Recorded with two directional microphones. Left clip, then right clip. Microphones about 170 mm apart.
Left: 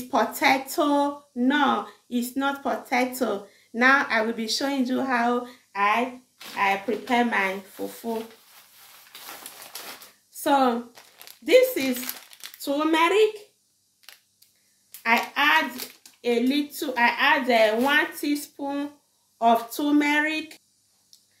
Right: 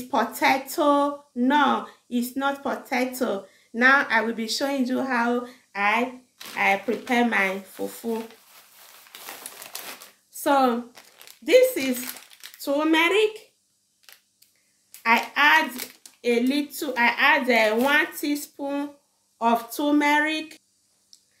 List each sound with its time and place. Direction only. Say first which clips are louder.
0.0 s a woman's voice: even; centre (ahead or behind)
9.7 s typewriter: right 1 dB; 50° right (ahead or behind)
10.3 s a sound: right 1 dB; 10° right (ahead or behind)
11.2 s speech: right 1 dB; 5° right (ahead or behind)
15.0 s a woman's voice: right 2 dB; 5° right (ahead or behind)